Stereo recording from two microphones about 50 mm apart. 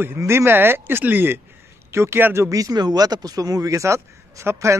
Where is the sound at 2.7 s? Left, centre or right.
Right.